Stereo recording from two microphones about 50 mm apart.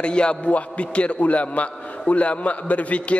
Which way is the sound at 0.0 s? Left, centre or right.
Centre.